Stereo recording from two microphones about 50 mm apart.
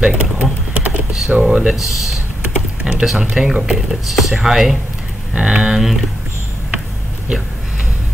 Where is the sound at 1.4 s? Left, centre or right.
Centre.